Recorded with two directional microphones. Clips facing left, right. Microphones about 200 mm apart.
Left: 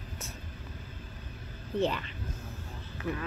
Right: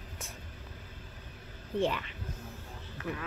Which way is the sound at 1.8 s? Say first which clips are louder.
Left 1 dB; 10° right (ahead or behind).